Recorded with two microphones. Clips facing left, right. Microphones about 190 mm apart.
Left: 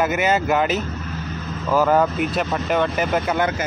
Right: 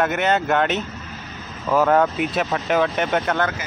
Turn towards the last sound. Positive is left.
turn(degrees=0)  # may be behind; listen again after turning